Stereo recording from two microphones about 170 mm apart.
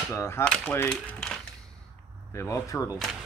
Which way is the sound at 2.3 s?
20° left (ahead or behind).